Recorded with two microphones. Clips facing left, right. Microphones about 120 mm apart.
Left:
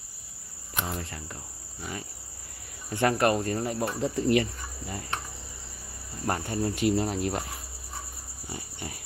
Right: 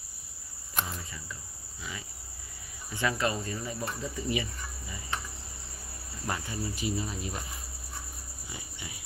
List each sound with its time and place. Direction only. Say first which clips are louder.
0.8 s speech: left 6 dB; 60° left (ahead or behind)
2.9 s cricket: left 6 dB; 60° left (ahead or behind)
6.2 s cricket: left 6 dB; 50° left (ahead or behind)
8.5 s pig: left 6 dB; 50° left (ahead or behind)